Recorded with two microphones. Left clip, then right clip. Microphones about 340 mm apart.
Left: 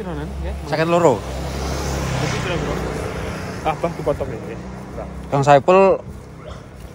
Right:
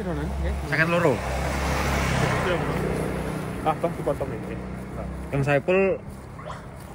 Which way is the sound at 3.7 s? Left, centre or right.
Left.